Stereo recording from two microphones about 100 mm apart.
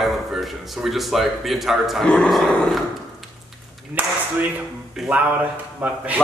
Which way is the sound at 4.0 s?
15° right (ahead or behind).